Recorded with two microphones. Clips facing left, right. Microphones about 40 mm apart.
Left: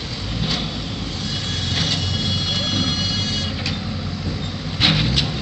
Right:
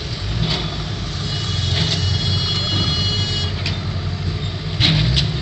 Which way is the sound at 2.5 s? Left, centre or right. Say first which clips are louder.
Even; right.